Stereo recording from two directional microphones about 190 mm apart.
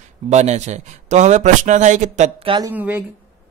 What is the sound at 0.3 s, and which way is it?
A man's voice, 35° right (ahead or behind).